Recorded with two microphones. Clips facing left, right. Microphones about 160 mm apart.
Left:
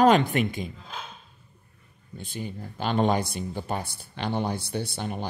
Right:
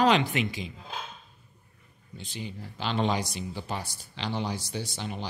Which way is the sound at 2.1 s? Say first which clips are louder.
Left 3 dB; 50° left (ahead or behind).